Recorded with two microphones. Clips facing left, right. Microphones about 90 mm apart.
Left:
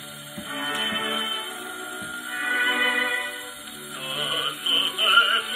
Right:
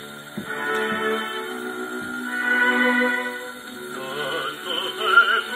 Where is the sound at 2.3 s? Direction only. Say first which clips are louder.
Right 5 dB; 30° right (ahead or behind).